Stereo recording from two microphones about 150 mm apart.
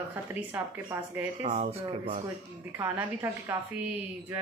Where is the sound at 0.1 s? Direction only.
10° right (ahead or behind).